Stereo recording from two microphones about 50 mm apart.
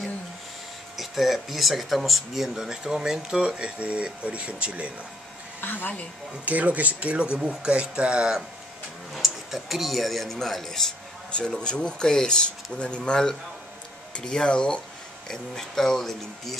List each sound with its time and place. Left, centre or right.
0.9 s speech: centre; by 4.9 s right
5.6 s a woman's voice: left
6.4 s speech: right
9.1 s a man's voice: centre
11.3 s speech: centre